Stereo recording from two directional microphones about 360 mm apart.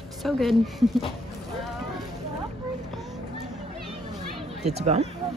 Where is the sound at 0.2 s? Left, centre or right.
Centre.